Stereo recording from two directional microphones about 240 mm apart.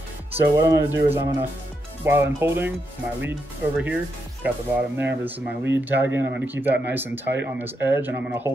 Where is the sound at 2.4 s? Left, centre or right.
Centre.